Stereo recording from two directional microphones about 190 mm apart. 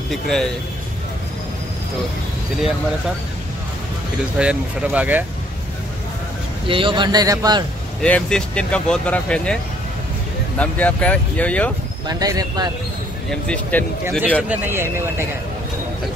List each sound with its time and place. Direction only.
0.1 s speech: 5° left (ahead or behind)
4.4 s speech: 5° right (ahead or behind)
6.7 s a man's voice: 25° right (ahead or behind)
8.0 s speech: 5° left (ahead or behind)
10.6 s speech: 5° left (ahead or behind)
12.1 s a man's voice: 20° right (ahead or behind)
13.3 s speech: 5° left (ahead or behind)
14.5 s speech: 10° right (ahead or behind)